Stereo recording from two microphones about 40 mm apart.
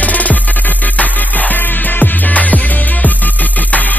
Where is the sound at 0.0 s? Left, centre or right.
Left.